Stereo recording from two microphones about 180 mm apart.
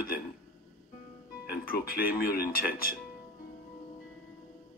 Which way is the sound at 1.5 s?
55° left (ahead or behind).